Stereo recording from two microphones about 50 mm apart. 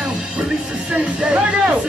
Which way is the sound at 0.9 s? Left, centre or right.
Centre.